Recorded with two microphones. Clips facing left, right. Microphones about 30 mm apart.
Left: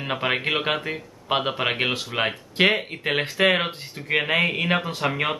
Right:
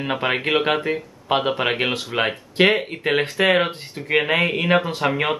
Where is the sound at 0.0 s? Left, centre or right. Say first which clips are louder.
Right 2 dB; centre.